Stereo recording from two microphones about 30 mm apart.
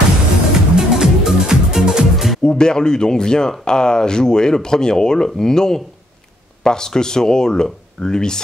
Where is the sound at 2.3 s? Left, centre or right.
Left.